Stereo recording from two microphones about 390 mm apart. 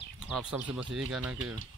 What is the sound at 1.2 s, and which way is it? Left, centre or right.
Speech, right.